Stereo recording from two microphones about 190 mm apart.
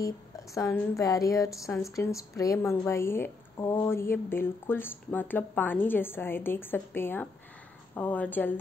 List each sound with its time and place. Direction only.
0.6 s a woman's voice: 15° left (ahead or behind)